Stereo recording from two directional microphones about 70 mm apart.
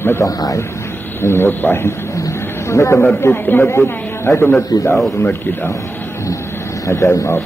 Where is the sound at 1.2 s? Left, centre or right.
Left.